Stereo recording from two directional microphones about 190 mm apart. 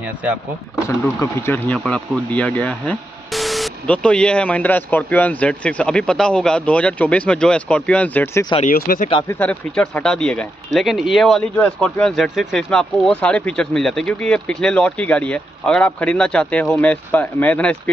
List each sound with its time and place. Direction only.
0.8 s speech: 15° left (ahead or behind)
8.6 s speech: 50° left (ahead or behind)
9.3 s speech: 10° left (ahead or behind)